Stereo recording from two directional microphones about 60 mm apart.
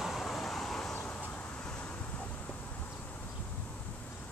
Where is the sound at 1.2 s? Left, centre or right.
Left.